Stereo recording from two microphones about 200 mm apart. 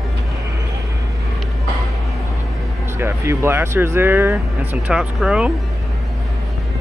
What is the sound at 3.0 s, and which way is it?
Speech, 15° right (ahead or behind).